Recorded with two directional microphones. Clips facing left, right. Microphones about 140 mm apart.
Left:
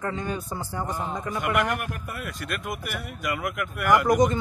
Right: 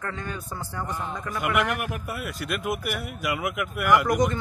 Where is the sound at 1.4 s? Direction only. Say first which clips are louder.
Right 1 dB; 5° right (ahead or behind).